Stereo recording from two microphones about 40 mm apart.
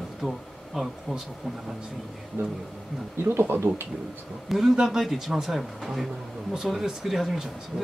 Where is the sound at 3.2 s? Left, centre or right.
Right.